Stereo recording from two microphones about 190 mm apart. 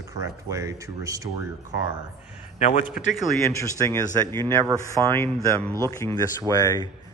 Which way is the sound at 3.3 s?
15° left (ahead or behind).